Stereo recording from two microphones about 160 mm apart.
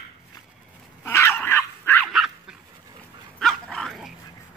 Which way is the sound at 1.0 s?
15° left (ahead or behind).